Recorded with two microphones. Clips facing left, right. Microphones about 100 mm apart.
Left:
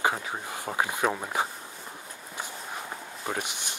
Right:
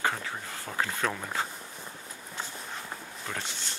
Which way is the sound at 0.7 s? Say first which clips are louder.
Left 3 dB; 15° left (ahead or behind).